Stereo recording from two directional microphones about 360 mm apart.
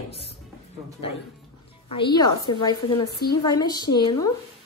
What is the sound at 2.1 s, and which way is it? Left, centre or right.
A woman's voice, centre.